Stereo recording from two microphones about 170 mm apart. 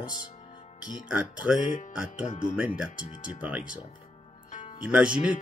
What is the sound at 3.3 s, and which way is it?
Speech, 5° right (ahead or behind).